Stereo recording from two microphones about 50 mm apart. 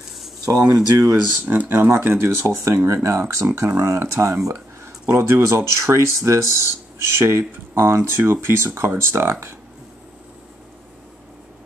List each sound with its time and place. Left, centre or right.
0.5 s speech: right
1.7 s speech: right
3.4 s speech: right
5.7 s speech: right